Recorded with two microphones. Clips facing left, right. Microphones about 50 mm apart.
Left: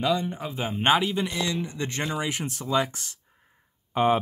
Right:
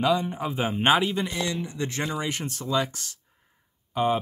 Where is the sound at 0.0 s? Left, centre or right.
Centre.